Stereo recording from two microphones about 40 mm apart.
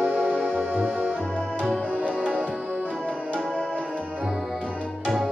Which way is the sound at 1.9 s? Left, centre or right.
Right.